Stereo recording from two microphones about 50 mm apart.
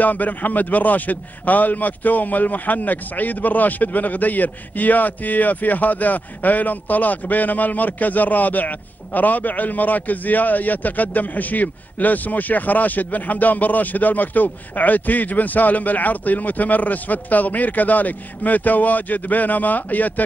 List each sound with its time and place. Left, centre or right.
0.0 s a man's voice: left